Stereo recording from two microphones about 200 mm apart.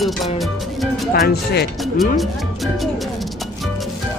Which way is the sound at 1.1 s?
50° left (ahead or behind).